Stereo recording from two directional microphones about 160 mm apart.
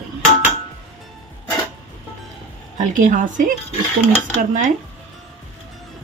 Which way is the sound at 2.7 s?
50° right (ahead or behind).